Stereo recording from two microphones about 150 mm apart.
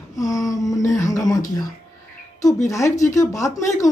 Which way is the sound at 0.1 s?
25° left (ahead or behind).